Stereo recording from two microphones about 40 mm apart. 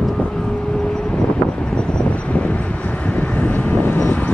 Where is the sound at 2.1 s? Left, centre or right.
Left.